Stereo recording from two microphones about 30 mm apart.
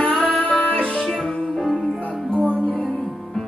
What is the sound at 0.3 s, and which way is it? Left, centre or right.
Music, left.